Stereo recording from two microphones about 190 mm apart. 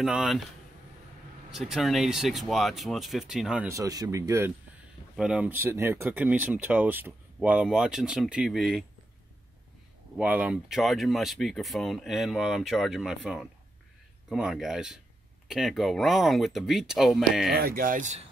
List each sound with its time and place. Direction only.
0.0 s speech: 5° right (ahead or behind)
1.5 s speech: centre (ahead or behind)
5.1 s speech: 5° right (ahead or behind)
10.1 s speech: 5° right (ahead or behind)
17.6 s speech: 50° right (ahead or behind)